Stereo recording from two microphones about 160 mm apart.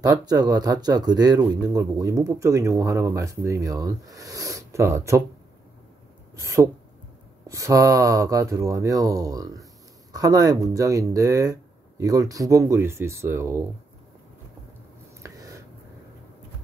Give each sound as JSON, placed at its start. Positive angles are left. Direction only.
{"t": 0.0, "sound": "speech", "side_deg": -25}
{"t": 6.3, "sound": "speech", "side_deg": -20}